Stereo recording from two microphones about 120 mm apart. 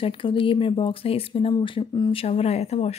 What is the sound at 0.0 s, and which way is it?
Speech, 45° left (ahead or behind).